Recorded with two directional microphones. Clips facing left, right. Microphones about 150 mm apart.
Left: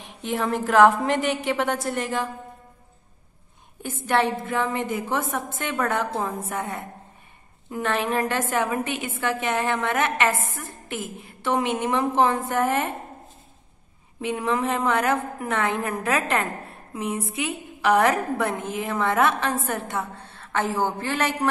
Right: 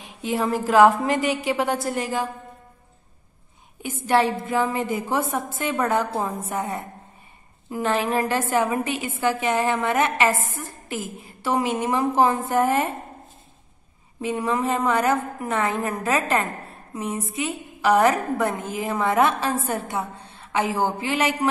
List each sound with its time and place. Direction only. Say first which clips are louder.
0.3 s a woman's voice: right 2 dB; centre (ahead or behind)
4.1 s a woman's voice: right 2 dB; 5° right (ahead or behind)
14.2 s a woman's voice: right 1 dB; centre (ahead or behind)
19.7 s a woman's voice: right 1 dB; 20° right (ahead or behind)